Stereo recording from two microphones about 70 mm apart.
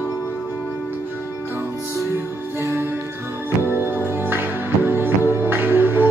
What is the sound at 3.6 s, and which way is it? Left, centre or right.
Music, right.